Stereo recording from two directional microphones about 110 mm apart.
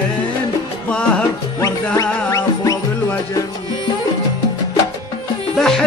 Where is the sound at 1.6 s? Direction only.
30° left (ahead or behind).